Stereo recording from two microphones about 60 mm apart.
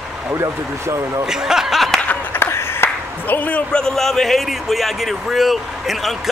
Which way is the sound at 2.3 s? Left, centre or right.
Left.